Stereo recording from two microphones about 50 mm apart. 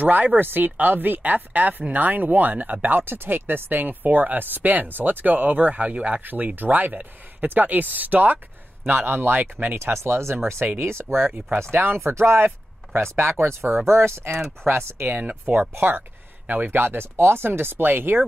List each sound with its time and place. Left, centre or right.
0.0 s speech: right
6.2 s speech: right
9.4 s speech: right
9.8 s speech: right
11.7 s speech: right
13.8 s speech: right
15.0 s speech: right